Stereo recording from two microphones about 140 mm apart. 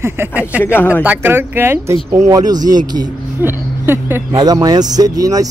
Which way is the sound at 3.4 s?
15° right (ahead or behind).